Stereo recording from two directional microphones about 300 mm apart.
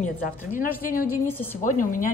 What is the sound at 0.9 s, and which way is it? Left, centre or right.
A woman's voice, left.